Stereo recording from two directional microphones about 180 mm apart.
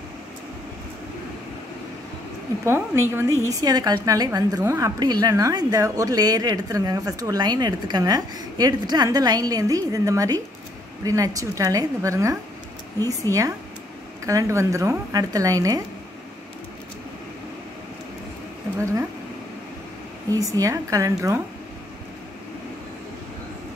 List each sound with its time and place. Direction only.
2.6 s a woman's voice: 15° right (ahead or behind)
20.2 s a woman's voice: 20° right (ahead or behind)